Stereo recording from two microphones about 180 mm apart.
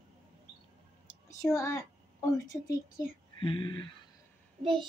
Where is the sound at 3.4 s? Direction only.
30° left (ahead or behind).